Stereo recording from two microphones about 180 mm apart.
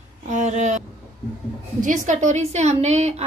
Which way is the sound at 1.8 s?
45° right (ahead or behind).